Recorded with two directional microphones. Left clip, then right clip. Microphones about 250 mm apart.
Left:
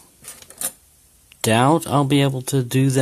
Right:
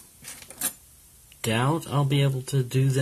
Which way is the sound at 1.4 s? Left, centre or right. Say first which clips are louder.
Left 10 dB; left.